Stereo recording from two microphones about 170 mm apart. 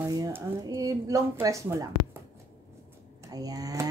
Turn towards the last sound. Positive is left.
turn(degrees=-20)  # may be behind; listen again after turning